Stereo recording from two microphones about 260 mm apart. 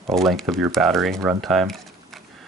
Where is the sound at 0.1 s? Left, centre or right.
Centre.